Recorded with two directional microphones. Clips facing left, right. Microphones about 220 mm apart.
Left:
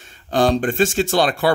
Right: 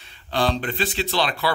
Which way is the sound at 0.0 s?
45° left (ahead or behind).